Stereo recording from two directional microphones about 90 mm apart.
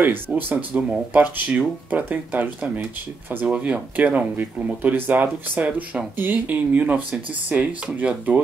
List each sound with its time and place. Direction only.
0.0 s speech: 20° right (ahead or behind)